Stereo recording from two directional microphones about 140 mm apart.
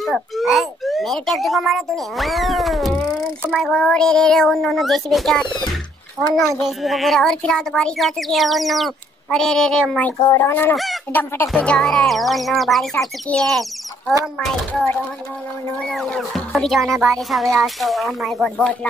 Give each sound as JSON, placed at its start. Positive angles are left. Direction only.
{"t": 0.0, "sound": "a child's voice", "side_deg": 0}
{"t": 6.8, "sound": "a child's voice", "side_deg": 0}
{"t": 10.1, "sound": "a child's voice", "side_deg": 25}
{"t": 15.9, "sound": "a child's voice", "side_deg": 0}